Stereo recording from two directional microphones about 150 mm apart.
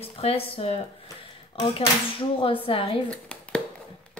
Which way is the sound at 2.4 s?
35° left (ahead or behind).